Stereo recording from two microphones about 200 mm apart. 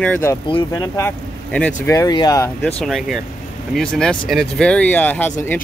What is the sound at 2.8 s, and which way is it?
Speech, centre (ahead or behind).